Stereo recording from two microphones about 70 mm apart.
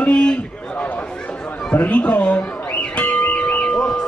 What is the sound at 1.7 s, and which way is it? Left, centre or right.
Music, left.